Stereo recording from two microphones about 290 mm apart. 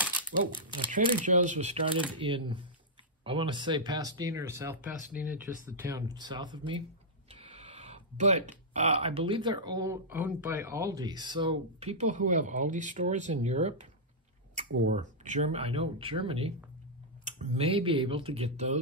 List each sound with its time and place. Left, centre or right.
0.9 s speech: right
14.9 s speech: right